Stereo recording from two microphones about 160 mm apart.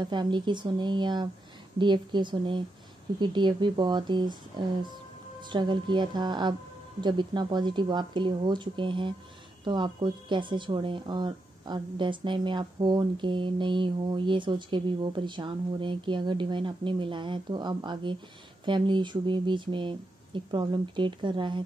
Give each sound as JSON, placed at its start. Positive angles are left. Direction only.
{"t": 0.0, "sound": "speech", "side_deg": -30}
{"t": 5.5, "sound": "speech", "side_deg": -30}